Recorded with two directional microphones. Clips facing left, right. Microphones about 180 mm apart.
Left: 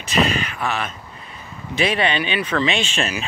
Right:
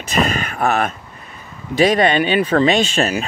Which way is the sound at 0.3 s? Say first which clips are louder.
Right 5 dB; 45° right (ahead or behind).